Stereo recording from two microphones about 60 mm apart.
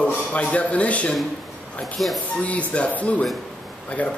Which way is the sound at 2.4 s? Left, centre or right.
Left.